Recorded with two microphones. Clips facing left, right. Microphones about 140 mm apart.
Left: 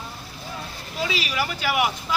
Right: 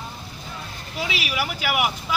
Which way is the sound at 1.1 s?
10° right (ahead or behind).